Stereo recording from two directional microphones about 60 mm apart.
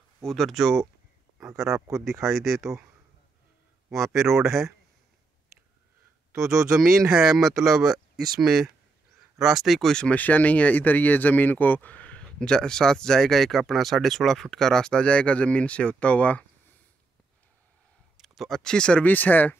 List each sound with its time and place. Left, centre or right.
0.2 s speech: centre
2.3 s speech: centre
3.9 s speech: centre
6.3 s speech: centre
10.0 s speech: left
18.1 s a sound: centre
18.6 s speech: centre
19.0 s speech: left